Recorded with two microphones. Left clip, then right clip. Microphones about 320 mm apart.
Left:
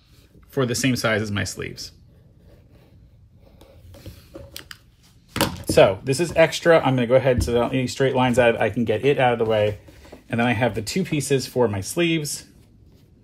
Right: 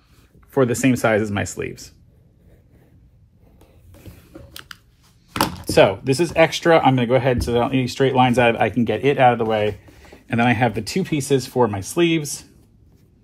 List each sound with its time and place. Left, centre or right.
0.5 s speech: centre
4.0 s a sound: centre
5.3 s speech: centre